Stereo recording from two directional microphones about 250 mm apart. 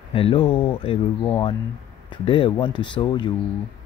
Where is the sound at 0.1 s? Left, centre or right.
Left.